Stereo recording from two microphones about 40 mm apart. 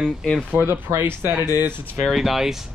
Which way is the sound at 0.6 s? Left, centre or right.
Right.